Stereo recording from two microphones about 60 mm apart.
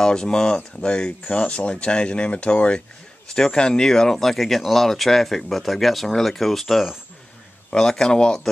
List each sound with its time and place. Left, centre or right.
0.0 s speech: centre